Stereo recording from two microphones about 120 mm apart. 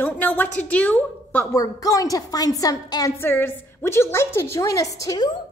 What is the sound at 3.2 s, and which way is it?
A woman's voice, 20° left (ahead or behind).